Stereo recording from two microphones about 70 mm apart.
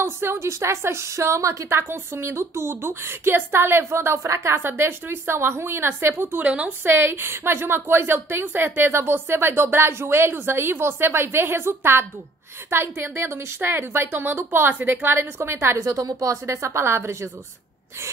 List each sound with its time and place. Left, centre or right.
0.0 s a woman's voice: right
1.8 s a woman's voice: right
4.6 s a woman's voice: right
15.8 s a woman's voice: right
16.3 s a woman's voice: right